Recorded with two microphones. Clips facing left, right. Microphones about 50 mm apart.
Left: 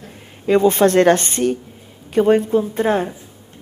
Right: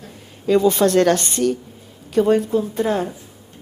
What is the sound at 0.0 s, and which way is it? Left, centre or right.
A woman's voice, left.